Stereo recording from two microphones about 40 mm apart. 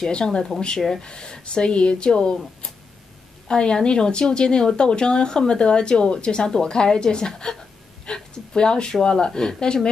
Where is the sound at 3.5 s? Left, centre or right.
Left.